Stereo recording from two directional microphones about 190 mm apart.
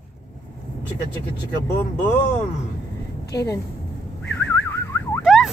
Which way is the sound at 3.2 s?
60° left (ahead or behind).